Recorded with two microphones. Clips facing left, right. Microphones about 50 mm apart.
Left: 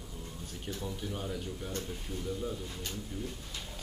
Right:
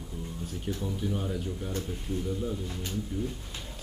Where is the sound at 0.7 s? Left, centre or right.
Centre.